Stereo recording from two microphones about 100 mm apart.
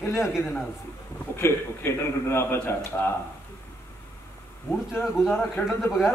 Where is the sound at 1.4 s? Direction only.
25° left (ahead or behind).